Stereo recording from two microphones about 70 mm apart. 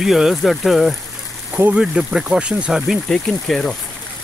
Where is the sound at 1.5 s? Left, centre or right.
Right.